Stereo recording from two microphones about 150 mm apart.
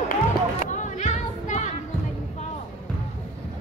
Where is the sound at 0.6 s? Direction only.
55° left (ahead or behind).